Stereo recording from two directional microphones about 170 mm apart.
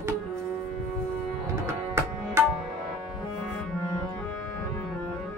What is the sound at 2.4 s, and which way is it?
Tabla, 15° right (ahead or behind).